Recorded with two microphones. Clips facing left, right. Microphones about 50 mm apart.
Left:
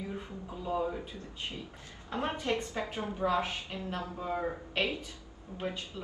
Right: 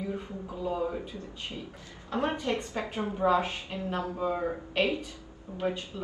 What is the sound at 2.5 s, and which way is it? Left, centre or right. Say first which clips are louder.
A woman's voice: right 1 dB; right.